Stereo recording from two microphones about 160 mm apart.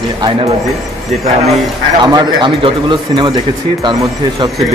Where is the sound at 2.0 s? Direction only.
25° right (ahead or behind).